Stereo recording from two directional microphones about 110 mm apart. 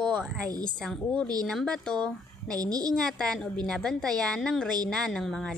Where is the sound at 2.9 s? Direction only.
5° left (ahead or behind).